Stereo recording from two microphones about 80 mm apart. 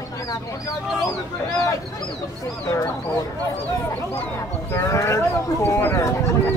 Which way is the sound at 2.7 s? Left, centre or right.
Left.